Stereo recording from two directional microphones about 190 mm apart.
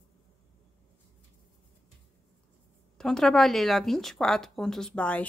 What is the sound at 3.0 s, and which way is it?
Speech, centre (ahead or behind).